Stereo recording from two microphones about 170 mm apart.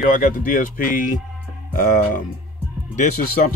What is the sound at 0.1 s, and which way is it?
Speech, 50° left (ahead or behind).